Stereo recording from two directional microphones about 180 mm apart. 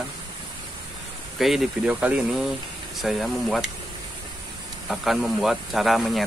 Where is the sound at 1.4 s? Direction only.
Centre (ahead or behind).